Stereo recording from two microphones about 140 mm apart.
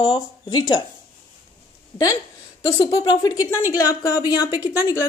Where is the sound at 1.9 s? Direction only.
25° left (ahead or behind).